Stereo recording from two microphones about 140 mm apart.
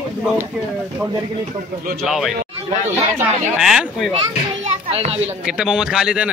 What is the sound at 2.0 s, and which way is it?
Speech, centre (ahead or behind).